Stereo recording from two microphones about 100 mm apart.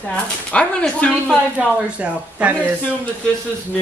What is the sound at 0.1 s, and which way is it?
Speech, 10° left (ahead or behind).